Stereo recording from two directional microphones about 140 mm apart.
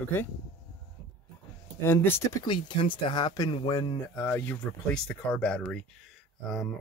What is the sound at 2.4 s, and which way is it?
Speech, 35° left (ahead or behind).